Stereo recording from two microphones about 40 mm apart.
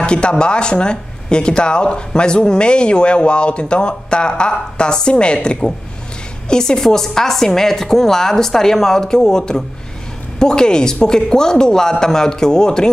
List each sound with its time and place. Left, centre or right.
0.0 s a woman's voice: left